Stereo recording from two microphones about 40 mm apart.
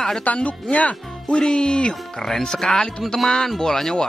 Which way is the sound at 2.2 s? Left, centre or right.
Centre.